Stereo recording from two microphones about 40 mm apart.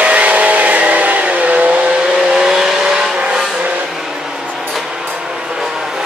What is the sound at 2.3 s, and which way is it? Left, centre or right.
Vehicle, centre.